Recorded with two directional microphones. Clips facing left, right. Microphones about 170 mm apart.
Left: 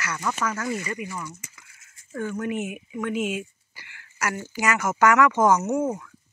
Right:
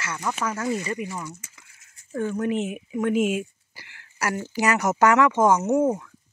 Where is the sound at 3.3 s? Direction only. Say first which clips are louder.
Right 4 dB; 40° right (ahead or behind).